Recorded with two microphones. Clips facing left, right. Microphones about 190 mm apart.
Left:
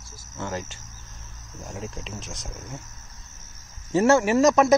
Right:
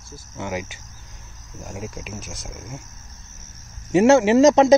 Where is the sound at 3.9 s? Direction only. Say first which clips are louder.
Right 5 dB; 20° right (ahead or behind).